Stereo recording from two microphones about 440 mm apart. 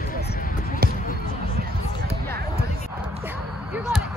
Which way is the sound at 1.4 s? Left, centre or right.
Right.